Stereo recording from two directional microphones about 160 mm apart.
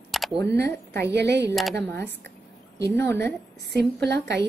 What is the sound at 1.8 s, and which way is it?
A woman's voice, 10° left (ahead or behind).